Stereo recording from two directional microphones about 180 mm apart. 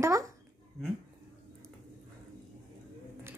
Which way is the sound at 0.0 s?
15° right (ahead or behind).